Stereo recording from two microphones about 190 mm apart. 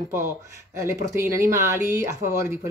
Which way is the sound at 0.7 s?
15° right (ahead or behind).